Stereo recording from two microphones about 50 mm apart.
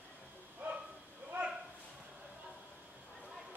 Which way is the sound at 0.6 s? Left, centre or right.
Right.